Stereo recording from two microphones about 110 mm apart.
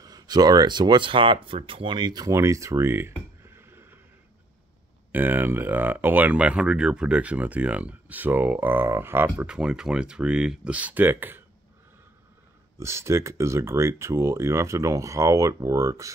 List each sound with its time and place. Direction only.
0.0 s speech: 35° right (ahead or behind); by 4.0 s 20° right (ahead or behind)
5.1 s speech: 20° right (ahead or behind)
12.7 s speech: 25° right (ahead or behind)